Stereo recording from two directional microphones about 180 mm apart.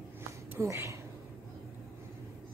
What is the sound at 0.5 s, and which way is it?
Speech, 15° right (ahead or behind).